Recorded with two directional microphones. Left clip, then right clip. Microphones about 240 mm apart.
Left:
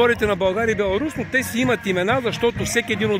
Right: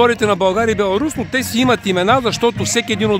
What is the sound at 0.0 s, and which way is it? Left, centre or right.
Speech, centre.